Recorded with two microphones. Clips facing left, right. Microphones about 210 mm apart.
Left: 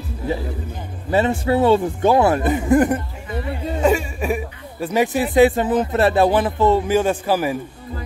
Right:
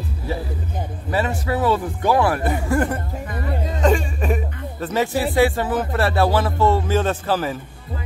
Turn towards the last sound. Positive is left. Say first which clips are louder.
# left 3 dB
turn(degrees=10)  # may be behind; listen again after turning